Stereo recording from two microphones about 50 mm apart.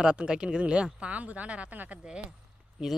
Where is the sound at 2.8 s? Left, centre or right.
Centre.